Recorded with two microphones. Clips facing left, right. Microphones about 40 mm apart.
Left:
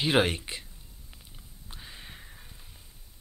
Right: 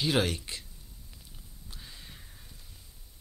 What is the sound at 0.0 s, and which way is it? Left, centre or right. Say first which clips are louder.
Speech: left 3 dB; left.